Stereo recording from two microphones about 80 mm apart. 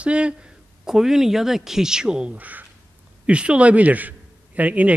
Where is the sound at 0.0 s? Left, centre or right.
Centre.